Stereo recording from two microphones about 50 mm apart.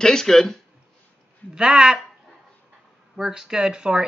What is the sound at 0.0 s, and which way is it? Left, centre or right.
Speech, centre.